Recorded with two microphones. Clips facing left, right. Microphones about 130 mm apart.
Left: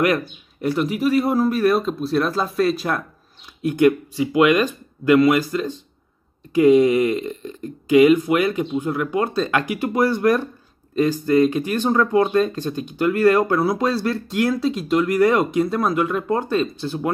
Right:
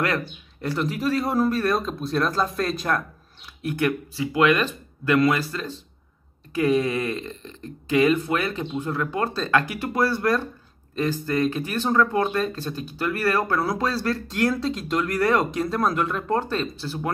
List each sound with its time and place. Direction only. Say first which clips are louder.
0.0 s speech: left 6 dB; 15° left (ahead or behind)
3.6 s speech: left 8 dB; 20° left (ahead or behind)